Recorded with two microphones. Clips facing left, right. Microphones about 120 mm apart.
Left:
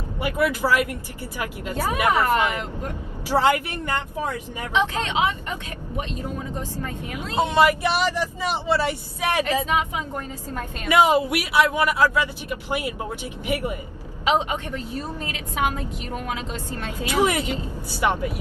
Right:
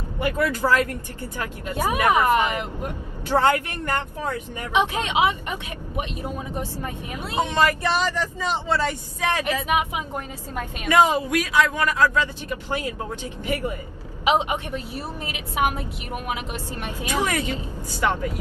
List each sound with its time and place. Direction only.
0.2 s speech: 15° left (ahead or behind)
2.0 s a woman's voice: 15° right (ahead or behind)
3.3 s speech: 10° left (ahead or behind)
4.7 s a woman's voice: 15° right (ahead or behind)
7.4 s speech: 15° left (ahead or behind)
9.7 s a woman's voice: 15° right (ahead or behind)
10.9 s speech: 15° left (ahead or behind)
14.2 s a woman's voice: 15° right (ahead or behind)
17.1 s speech: 15° left (ahead or behind)